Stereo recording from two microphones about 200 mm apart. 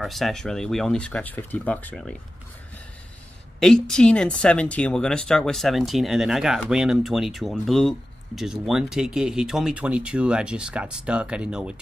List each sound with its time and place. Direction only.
0.0 s speech: centre (ahead or behind)
3.5 s speech: 5° left (ahead or behind)